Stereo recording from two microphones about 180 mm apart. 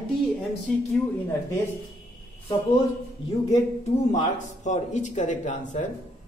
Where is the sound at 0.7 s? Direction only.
Centre (ahead or behind).